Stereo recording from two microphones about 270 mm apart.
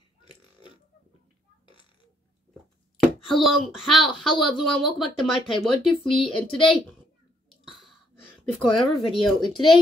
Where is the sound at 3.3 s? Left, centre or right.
Centre.